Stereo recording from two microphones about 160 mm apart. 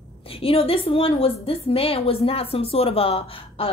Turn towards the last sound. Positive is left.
turn(degrees=35)  # may be behind; listen again after turning